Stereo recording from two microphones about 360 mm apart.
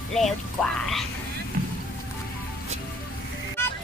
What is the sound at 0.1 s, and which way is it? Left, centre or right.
Speech, centre.